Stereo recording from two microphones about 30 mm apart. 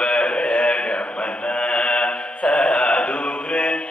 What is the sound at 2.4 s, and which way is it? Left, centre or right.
Music, left.